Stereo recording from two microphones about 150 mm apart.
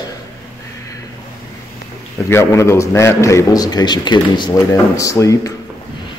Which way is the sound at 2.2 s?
20° left (ahead or behind).